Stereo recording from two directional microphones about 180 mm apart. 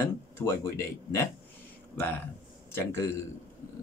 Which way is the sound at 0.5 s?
15° left (ahead or behind).